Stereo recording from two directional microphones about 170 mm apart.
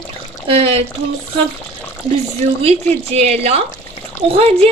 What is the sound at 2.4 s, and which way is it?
Speech, 35° right (ahead or behind).